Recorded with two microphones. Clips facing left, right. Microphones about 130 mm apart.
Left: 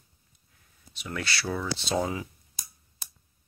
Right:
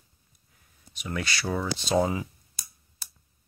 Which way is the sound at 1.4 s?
20° right (ahead or behind).